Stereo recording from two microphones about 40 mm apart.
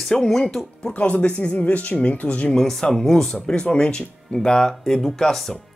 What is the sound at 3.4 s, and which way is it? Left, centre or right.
Speech, left.